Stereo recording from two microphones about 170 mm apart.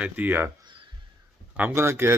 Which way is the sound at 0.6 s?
30° right (ahead or behind).